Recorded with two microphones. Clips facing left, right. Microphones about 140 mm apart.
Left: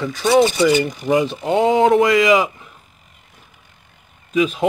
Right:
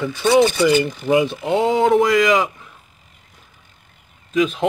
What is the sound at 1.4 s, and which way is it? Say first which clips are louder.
Speech: left 2 dB; centre (ahead or behind).